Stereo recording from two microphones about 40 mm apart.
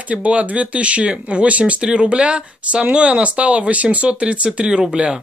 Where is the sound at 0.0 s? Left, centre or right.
Right.